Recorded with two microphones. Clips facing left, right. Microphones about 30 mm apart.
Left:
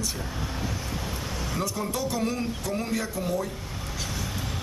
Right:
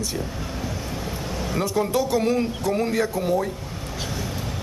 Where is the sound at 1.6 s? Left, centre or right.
Right.